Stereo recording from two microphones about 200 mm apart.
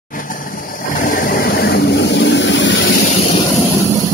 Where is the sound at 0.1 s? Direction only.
45° left (ahead or behind); by 2.9 s 65° left (ahead or behind).